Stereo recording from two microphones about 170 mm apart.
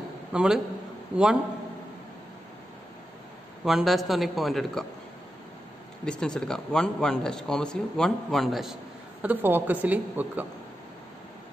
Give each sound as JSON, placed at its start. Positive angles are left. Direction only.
{"t": 0.3, "sound": "a man's voice", "side_deg": -5}
{"t": 3.6, "sound": "a man's voice", "side_deg": 0}
{"t": 6.0, "sound": "a man's voice", "side_deg": 5}
{"t": 9.2, "sound": "a woman's voice", "side_deg": -10}